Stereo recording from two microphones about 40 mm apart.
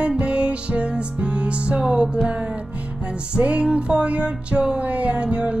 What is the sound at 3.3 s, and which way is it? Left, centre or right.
Music, right.